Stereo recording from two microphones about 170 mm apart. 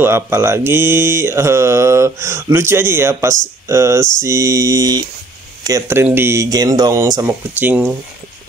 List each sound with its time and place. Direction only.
0.0 s speech: 15° right (ahead or behind)